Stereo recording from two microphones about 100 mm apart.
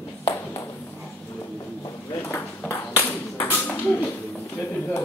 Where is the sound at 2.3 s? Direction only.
25° left (ahead or behind).